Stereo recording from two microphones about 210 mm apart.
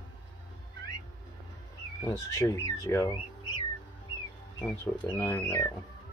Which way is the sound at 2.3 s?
15° left (ahead or behind).